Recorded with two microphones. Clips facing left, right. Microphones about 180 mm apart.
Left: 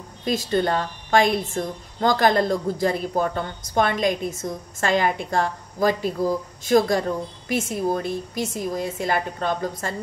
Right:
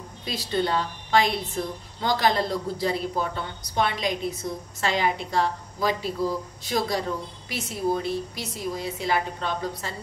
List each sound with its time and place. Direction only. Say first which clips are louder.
0.2 s a woman's voice: left 5 dB; 50° left (ahead or behind)